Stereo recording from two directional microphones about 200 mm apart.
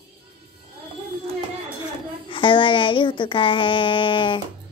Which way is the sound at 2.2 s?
25° left (ahead or behind).